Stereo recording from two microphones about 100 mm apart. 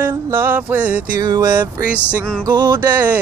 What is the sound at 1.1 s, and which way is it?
Music, 45° right (ahead or behind).